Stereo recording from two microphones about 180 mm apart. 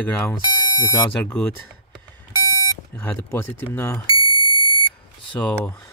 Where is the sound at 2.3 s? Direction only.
20° left (ahead or behind).